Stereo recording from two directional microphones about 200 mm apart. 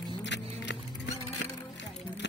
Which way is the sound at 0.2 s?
60° left (ahead or behind).